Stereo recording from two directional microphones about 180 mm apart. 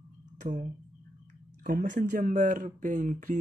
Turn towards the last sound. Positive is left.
turn(degrees=-45)  # may be behind; listen again after turning